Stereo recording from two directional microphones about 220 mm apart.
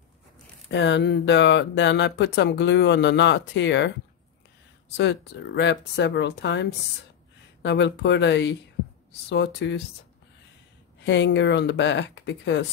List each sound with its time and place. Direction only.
0.7 s speech: 55° left (ahead or behind)
4.9 s speech: 50° left (ahead or behind)
11.1 s speech: 55° left (ahead or behind)